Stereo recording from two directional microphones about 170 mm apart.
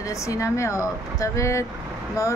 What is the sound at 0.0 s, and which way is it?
Speech, 20° left (ahead or behind).